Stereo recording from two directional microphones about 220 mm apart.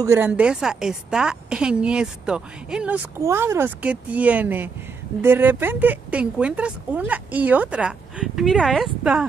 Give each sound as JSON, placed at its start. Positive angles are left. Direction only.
{"t": 0.0, "sound": "a woman's voice", "side_deg": -10}